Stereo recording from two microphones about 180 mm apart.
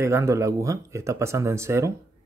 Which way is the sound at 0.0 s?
15° right (ahead or behind).